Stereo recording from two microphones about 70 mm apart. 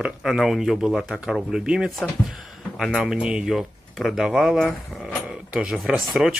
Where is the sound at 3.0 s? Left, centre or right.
Centre.